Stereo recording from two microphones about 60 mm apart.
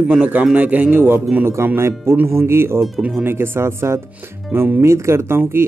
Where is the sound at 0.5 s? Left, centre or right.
Right.